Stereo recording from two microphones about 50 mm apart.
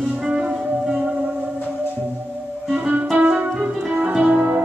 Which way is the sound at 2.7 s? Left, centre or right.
Right.